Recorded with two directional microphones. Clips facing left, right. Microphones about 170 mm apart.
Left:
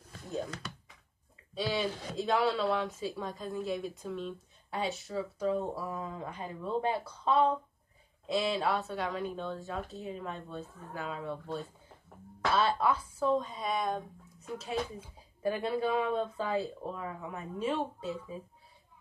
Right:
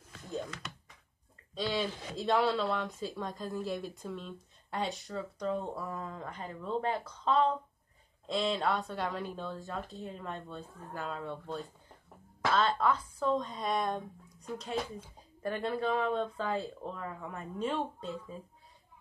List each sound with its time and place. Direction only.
1.5 s speech: 5° left (ahead or behind)